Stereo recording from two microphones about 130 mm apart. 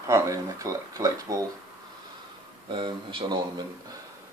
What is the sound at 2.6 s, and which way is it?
Speech, 40° right (ahead or behind).